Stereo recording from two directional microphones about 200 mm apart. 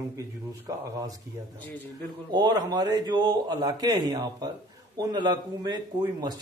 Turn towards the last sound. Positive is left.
turn(degrees=-20)  # may be behind; listen again after turning